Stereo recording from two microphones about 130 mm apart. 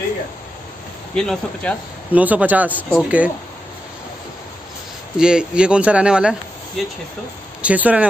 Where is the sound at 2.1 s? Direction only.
10° right (ahead or behind).